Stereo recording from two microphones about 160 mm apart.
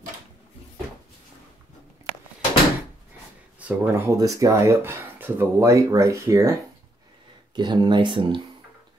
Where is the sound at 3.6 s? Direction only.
15° right (ahead or behind).